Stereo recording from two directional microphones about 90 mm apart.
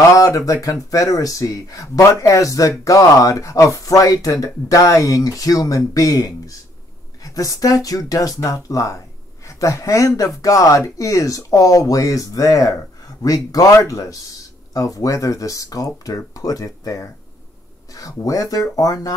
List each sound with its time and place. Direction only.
0.1 s speech: 40° left (ahead or behind)
18.2 s speech: 40° left (ahead or behind)